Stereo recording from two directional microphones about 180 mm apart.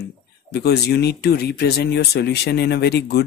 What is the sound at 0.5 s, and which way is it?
Speech, 65° left (ahead or behind).